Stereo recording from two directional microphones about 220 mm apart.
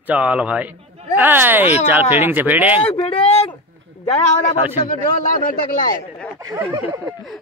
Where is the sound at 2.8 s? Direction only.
25° left (ahead or behind).